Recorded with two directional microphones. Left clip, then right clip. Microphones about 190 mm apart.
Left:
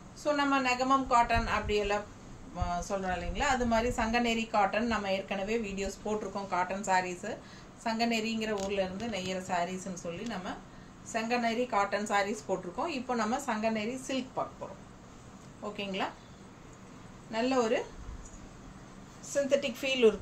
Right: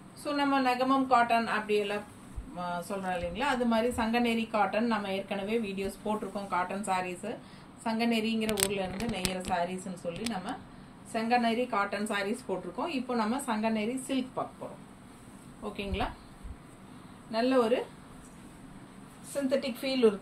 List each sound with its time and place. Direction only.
0.2 s a woman's voice: 20° left (ahead or behind)
11.1 s a woman's voice: 20° left (ahead or behind)
15.7 s a woman's voice: 20° left (ahead or behind)
17.3 s a woman's voice: 20° left (ahead or behind)
19.5 s a woman's voice: 25° left (ahead or behind)